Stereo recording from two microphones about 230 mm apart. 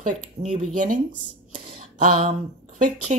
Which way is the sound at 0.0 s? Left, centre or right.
Right.